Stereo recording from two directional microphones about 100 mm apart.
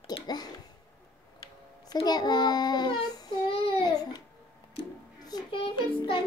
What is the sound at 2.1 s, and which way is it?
Speech, 40° left (ahead or behind).